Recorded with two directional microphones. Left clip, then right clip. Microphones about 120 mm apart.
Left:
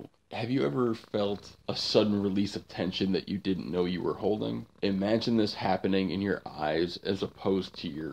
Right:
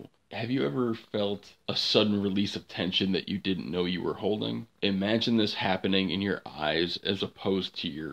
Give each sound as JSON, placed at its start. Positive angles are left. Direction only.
{"t": 0.3, "sound": "speech", "side_deg": 30}